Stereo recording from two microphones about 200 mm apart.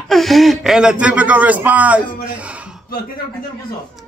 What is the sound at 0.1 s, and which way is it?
Speech, centre (ahead or behind).